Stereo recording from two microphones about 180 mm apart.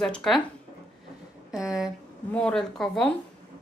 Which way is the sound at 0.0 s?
Centre (ahead or behind).